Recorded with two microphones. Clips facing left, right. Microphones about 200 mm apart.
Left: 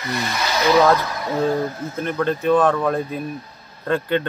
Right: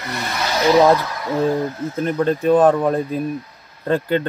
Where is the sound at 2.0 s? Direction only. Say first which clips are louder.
Right 3 dB; 35° right (ahead or behind).